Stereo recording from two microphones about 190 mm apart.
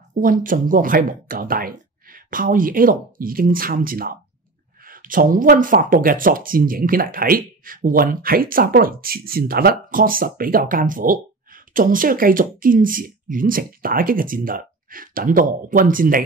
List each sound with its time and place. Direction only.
0.1 s speech: 45° right (ahead or behind)